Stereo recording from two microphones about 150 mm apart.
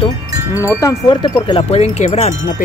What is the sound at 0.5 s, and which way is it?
Chime, 20° left (ahead or behind).